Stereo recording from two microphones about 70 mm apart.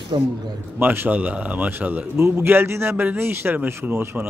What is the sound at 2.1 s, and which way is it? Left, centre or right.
A man's voice, right.